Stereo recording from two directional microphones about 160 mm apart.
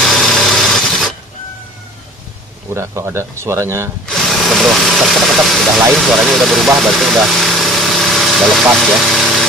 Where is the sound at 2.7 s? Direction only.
15° right (ahead or behind).